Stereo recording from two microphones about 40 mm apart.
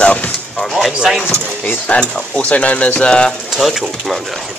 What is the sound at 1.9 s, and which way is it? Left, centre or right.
Speech, left.